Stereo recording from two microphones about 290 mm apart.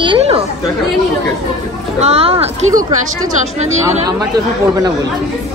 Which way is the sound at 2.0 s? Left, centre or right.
Centre.